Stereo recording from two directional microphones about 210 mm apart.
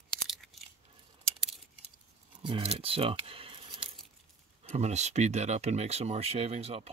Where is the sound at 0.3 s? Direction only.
Centre (ahead or behind).